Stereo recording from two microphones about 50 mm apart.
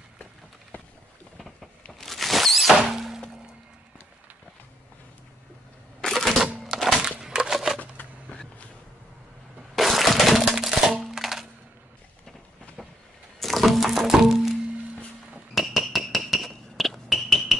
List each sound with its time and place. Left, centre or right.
0.2 s a sound: left
1.9 s squeal: centre
2.9 s thunk: centre
5.9 s camera: centre
7.0 s a sound: centre
9.8 s coin: centre
12.8 s vehicle: centre
13.4 s music: centre
15.5 s fire alarm: centre